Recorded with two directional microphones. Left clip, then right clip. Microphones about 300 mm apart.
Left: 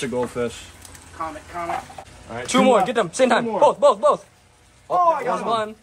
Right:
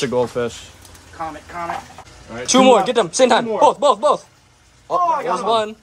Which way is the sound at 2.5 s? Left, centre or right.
Centre.